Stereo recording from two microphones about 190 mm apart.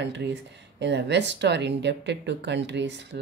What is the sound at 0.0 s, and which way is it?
Speech, 65° right (ahead or behind).